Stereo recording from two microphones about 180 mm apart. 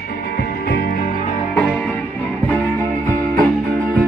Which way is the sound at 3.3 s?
55° right (ahead or behind).